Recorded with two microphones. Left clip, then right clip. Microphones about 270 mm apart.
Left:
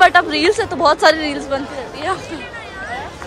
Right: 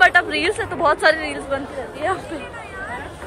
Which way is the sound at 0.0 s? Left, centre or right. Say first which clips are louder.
Left 3 dB; centre.